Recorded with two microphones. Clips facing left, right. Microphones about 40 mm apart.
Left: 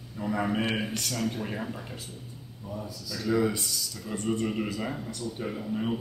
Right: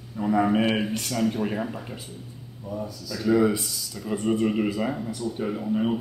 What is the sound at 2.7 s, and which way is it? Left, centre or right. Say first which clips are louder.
A man's voice: right 5 dB; centre.